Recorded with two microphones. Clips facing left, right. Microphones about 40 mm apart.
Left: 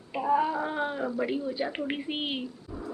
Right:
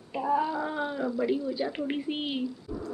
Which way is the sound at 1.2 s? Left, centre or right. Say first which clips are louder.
Right 3 dB; left.